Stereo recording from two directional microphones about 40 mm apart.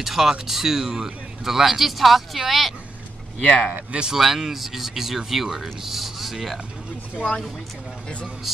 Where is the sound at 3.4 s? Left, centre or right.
Centre.